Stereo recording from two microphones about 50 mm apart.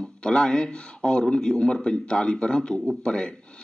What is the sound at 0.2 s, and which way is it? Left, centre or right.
Speech, centre.